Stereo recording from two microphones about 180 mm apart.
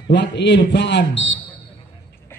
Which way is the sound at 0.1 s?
75° left (ahead or behind).